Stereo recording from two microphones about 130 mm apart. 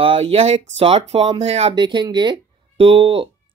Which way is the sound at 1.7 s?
35° right (ahead or behind).